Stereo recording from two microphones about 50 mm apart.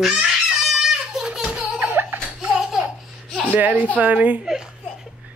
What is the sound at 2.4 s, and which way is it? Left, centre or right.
Laughter, centre.